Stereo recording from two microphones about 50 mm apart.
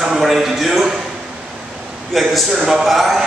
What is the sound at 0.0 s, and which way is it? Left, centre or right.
Speech, centre.